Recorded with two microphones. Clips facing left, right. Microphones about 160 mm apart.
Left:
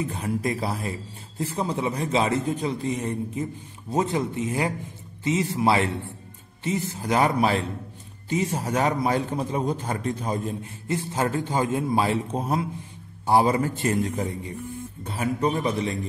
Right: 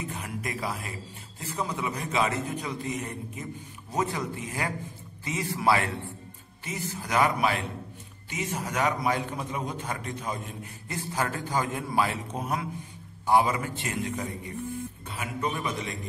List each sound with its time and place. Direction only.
0.0 s a man's voice: 30° left (ahead or behind)